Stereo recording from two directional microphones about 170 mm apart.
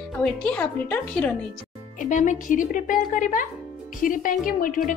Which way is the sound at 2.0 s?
50° left (ahead or behind).